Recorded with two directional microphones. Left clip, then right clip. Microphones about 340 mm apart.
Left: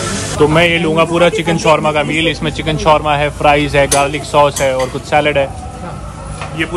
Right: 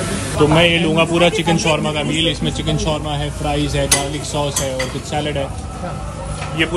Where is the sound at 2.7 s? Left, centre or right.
Centre.